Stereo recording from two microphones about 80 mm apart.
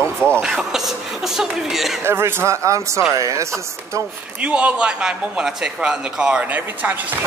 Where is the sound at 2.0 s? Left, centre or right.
Right.